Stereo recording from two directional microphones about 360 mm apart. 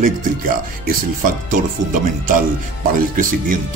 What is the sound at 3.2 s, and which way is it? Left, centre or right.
Speech, right.